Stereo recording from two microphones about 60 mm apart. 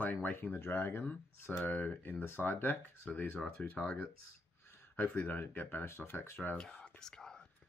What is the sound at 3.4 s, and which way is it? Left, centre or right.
Speech, centre.